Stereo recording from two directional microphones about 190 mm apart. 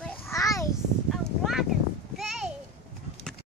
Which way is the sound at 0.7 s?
Centre (ahead or behind).